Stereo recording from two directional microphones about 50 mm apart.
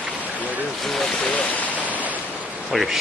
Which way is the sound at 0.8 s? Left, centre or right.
Centre.